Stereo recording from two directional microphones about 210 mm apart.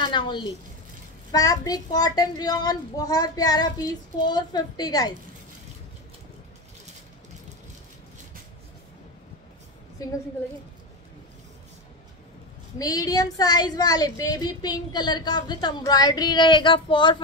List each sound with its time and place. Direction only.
0.0 s a woman's voice: 20° left (ahead or behind)
10.0 s a child's voice: 15° left (ahead or behind)
12.7 s speech: 15° left (ahead or behind)